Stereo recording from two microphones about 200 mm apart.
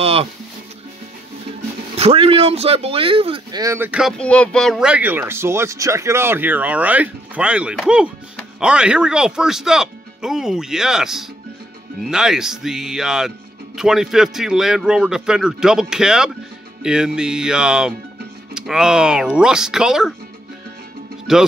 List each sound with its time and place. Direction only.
0.0 s speech: 30° right (ahead or behind)
2.0 s speech: 30° right (ahead or behind); by 4.1 s 10° right (ahead or behind)
4.2 s speech: 5° left (ahead or behind)
21.3 s speech: 5° right (ahead or behind)